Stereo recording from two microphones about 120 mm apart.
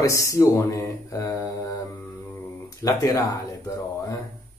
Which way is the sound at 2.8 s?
30° left (ahead or behind).